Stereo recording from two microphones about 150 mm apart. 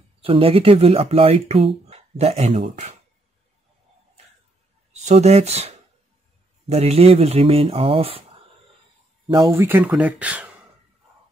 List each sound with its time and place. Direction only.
0.2 s speech: 40° right (ahead or behind)
4.9 s speech: 45° right (ahead or behind)
9.3 s speech: 20° right (ahead or behind)